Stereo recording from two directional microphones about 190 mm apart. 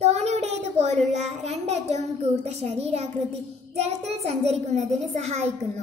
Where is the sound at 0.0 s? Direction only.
35° right (ahead or behind).